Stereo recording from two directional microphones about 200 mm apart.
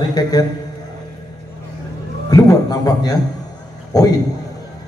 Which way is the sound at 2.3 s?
20° left (ahead or behind).